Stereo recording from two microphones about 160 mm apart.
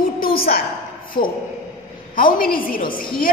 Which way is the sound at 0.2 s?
70° left (ahead or behind).